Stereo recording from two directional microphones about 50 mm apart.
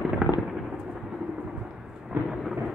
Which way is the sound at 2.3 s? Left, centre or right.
Centre.